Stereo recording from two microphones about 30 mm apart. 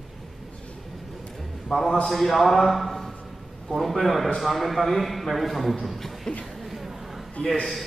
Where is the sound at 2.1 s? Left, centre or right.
Centre.